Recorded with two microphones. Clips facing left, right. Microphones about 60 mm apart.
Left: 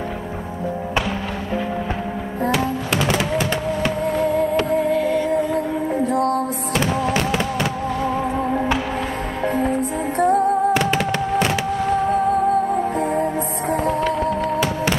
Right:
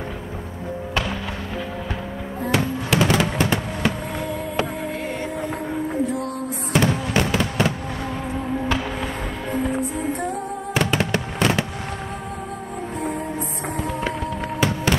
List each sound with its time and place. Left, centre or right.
4.9 s music: right
6.0 s music: left
7.2 s fireworks: centre
10.1 s music: left